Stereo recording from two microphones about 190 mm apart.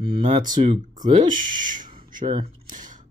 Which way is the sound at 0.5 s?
40° right (ahead or behind).